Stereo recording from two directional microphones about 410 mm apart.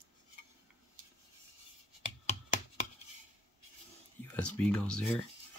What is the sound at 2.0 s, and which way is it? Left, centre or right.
Chopping, centre.